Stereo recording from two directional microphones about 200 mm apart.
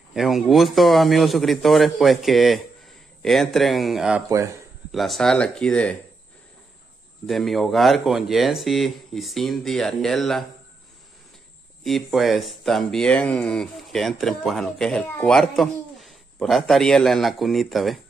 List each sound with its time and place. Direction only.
0.1 s speech: centre (ahead or behind)
4.3 s speech: 15° right (ahead or behind)
4.9 s speech: centre (ahead or behind)
7.2 s speech: centre (ahead or behind)
11.8 s speech: centre (ahead or behind)